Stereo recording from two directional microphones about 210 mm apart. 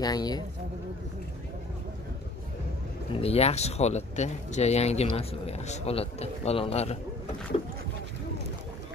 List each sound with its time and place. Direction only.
0.0 s speech: 20° left (ahead or behind)
3.2 s speech: 30° left (ahead or behind)